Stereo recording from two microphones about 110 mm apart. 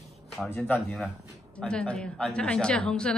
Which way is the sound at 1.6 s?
10° left (ahead or behind).